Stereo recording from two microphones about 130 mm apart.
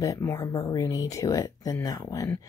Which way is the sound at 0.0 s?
25° left (ahead or behind).